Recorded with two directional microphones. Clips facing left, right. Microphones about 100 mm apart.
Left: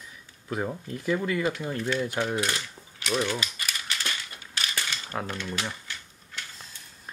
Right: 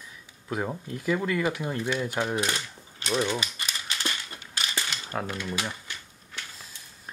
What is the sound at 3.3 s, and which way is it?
Cap gun, 25° right (ahead or behind).